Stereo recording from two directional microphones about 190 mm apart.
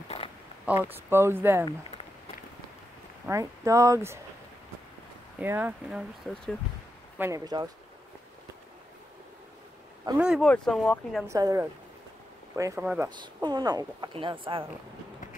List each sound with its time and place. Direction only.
0.9 s speech: 10° right (ahead or behind)
3.3 s speech: 15° right (ahead or behind)
5.4 s speech: 10° right (ahead or behind)
7.2 s speech: 15° right (ahead or behind)
10.1 s speech: 5° right (ahead or behind)
11.2 s speech: 15° right (ahead or behind)
13.2 s speech: 20° right (ahead or behind)